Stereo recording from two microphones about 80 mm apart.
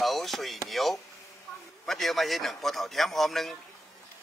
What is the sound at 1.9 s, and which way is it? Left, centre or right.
A man's voice, centre.